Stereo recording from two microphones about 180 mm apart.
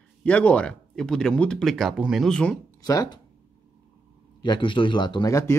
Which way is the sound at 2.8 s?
20° left (ahead or behind).